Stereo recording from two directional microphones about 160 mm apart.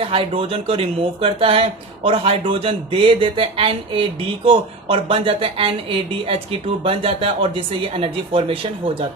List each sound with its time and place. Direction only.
0.0 s a woman's voice: 35° right (ahead or behind)